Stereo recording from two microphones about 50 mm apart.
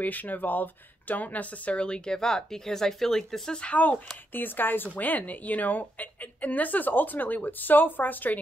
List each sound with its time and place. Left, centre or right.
0.0 s speech: left; by 3.6 s centre
3.6 s a woman's voice: left